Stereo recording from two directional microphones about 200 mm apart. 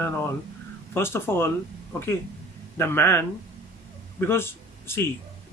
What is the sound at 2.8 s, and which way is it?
A man's voice, 10° left (ahead or behind).